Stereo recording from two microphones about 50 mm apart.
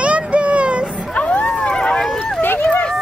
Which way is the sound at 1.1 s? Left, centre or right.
Left.